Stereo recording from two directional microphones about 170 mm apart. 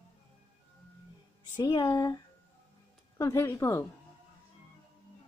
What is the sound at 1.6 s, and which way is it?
Speech, 25° left (ahead or behind).